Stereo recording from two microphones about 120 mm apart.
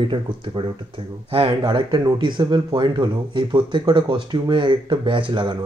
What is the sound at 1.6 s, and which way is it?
Speech, 35° right (ahead or behind).